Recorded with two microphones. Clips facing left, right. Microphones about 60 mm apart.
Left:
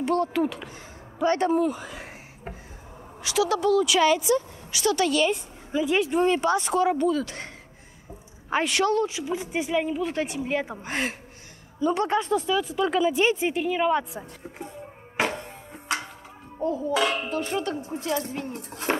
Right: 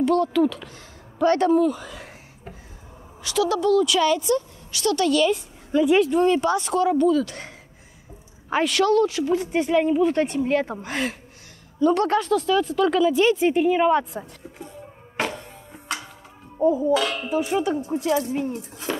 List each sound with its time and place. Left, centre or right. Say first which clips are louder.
0.0 s speech: right 4 dB; left
3.3 s speech: right 2 dB; centre
13.6 s a sound: right 5 dB; centre
15.2 s music: left 1 dB; left
16.5 s a child's voice: right 7 dB; centre
16.9 s speech: right 2 dB; left
17.3 s a sound: right 5 dB; centre
18.5 s cutlery: left 1 dB; left